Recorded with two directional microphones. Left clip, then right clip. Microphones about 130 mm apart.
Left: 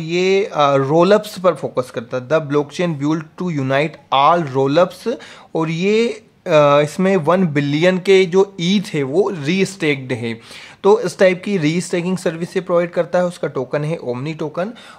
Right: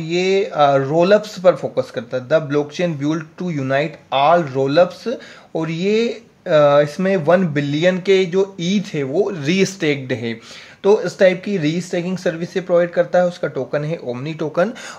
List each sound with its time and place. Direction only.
0.0 s speech: 15° left (ahead or behind)
0.8 s speech: 40° left (ahead or behind)
9.5 s speech: 10° left (ahead or behind)
10.8 s speech: 30° left (ahead or behind)